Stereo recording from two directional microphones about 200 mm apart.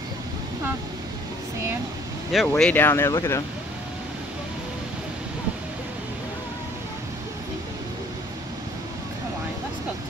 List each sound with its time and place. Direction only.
2.3 s speech: 5° left (ahead or behind)